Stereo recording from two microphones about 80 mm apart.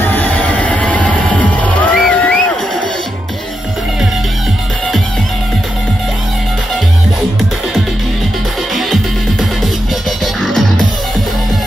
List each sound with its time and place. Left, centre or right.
0.0 s music: left
8.7 s music: centre